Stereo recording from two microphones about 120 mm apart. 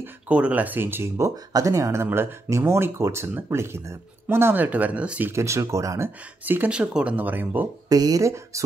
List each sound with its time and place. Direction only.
0.0 s speech: 10° right (ahead or behind)
5.3 s speech: 25° right (ahead or behind)
6.4 s speech: 15° right (ahead or behind)
7.9 s speech: 30° right (ahead or behind)